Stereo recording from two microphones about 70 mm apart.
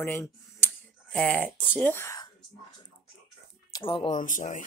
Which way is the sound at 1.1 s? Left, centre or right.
Centre.